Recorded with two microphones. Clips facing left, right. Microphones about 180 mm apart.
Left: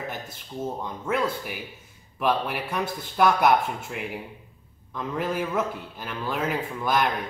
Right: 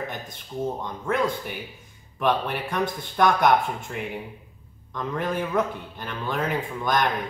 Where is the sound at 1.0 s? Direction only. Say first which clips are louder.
Right 2 dB; 5° left (ahead or behind).